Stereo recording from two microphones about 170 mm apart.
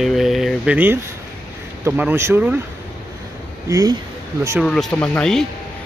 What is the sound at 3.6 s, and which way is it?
Speech, 20° right (ahead or behind).